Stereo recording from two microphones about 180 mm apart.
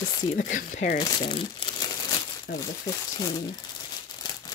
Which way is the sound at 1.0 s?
25° left (ahead or behind).